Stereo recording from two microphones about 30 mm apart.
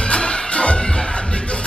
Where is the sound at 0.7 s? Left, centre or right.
Left.